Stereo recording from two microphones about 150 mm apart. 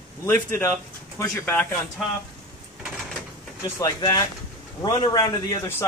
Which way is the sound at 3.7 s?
25° left (ahead or behind).